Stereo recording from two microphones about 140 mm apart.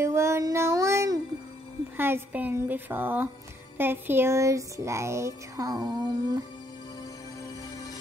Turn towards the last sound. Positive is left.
turn(degrees=-30)  # may be behind; listen again after turning